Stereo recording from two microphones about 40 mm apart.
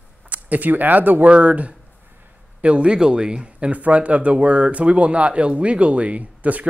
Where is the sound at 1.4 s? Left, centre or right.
Right.